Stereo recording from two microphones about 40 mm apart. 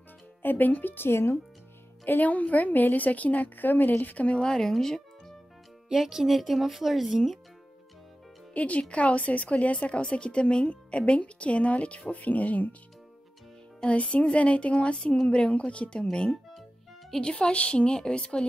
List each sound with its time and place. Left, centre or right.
0.4 s speech: left
2.0 s a woman's voice: left
4.4 s speech: centre
5.9 s speech: centre
8.5 s a woman's voice: left
13.8 s a woman's voice: left